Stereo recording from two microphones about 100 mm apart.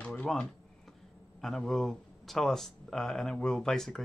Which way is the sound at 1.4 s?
5° left (ahead or behind).